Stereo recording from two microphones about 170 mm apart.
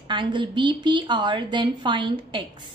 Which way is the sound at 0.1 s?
30° right (ahead or behind).